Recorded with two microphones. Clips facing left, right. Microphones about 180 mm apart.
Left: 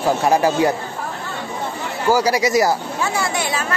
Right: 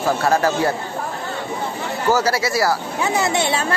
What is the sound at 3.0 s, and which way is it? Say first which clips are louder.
Speech: right 2 dB; 20° right (ahead or behind).